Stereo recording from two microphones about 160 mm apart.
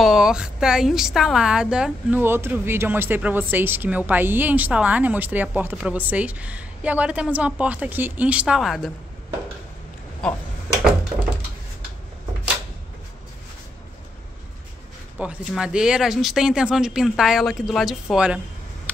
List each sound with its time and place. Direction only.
0.0 s a woman's voice: 5° right (ahead or behind)
15.1 s speech: 5° right (ahead or behind)